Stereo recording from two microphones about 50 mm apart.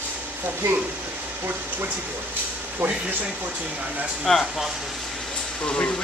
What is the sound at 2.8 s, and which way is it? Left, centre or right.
Speech, right.